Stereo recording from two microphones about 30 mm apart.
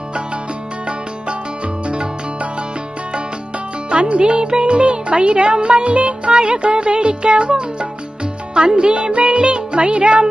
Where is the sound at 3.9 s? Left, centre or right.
Right.